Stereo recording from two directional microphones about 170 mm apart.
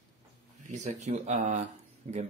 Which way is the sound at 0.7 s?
45° right (ahead or behind).